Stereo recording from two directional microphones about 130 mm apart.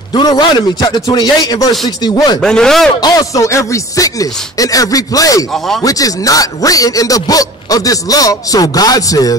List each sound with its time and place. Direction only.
0.1 s a man's voice: 35° left (ahead or behind)
2.4 s a man's voice: 5° left (ahead or behind)
3.0 s a man's voice: 30° left (ahead or behind)